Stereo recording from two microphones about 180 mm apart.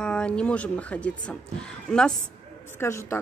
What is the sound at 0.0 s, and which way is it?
A woman's voice, 5° left (ahead or behind).